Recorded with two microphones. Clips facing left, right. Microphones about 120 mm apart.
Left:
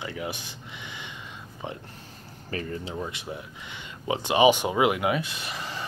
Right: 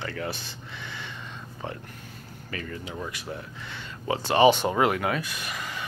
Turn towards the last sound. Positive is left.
turn(degrees=30)  # may be behind; listen again after turning